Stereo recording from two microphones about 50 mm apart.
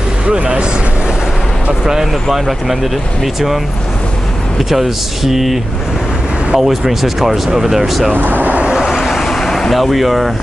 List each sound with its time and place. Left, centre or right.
0.3 s speech: centre
1.9 s speech: centre
4.6 s speech: centre
8.1 s speech: right
8.6 s vehicle: centre